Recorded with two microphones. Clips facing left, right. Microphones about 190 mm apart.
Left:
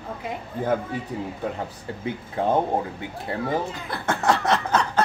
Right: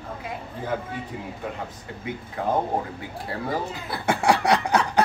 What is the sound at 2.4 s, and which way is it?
Speech, 30° left (ahead or behind).